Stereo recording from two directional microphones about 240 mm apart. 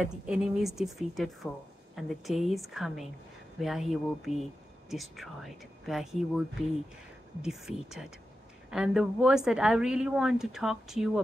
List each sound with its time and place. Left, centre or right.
0.0 s speech: centre
7.4 s speech: centre